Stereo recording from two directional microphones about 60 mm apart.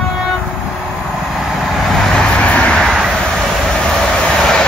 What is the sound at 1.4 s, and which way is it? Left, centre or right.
Vehicle, centre.